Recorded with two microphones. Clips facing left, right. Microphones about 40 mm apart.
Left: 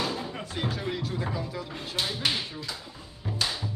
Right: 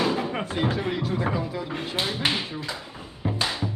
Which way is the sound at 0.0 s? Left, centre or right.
Right.